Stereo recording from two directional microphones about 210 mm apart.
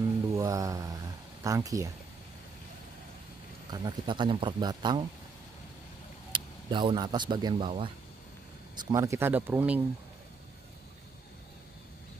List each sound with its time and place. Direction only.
0.3 s a sound: 15° right (ahead or behind)
3.7 s speech: 20° right (ahead or behind)
6.3 s speech: 25° right (ahead or behind)
8.7 s speech: 15° right (ahead or behind)